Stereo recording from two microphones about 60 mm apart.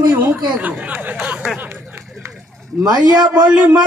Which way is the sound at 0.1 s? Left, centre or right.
Right.